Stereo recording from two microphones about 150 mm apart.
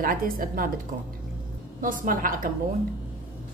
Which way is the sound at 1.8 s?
65° right (ahead or behind).